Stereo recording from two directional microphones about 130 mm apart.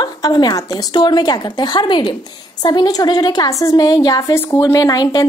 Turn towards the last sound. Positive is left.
turn(degrees=30)  # may be behind; listen again after turning